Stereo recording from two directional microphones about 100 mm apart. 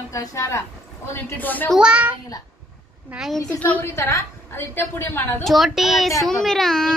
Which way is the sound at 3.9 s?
30° left (ahead or behind).